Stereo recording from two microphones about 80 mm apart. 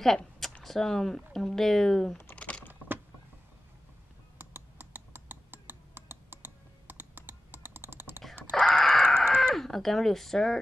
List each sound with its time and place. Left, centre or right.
0.0 s speech: centre
2.3 s typing: centre
4.4 s computer keyboard: right
8.5 s a sound: centre